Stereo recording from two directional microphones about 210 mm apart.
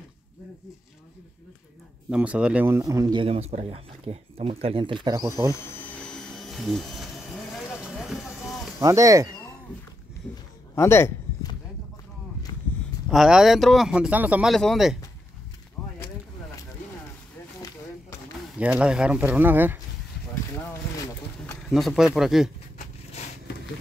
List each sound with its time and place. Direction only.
2.0 s speech: 5° right (ahead or behind)
6.3 s vehicle: centre (ahead or behind)
8.8 s speech: 15° right (ahead or behind)
10.7 s a sound: 10° left (ahead or behind)
13.1 s a man's voice: centre (ahead or behind)
15.8 s a sound: 5° left (ahead or behind)
18.6 s speech: 5° right (ahead or behind)
21.6 s a man's voice: centre (ahead or behind)